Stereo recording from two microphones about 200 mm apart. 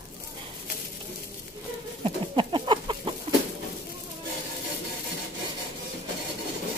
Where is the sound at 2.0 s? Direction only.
25° right (ahead or behind).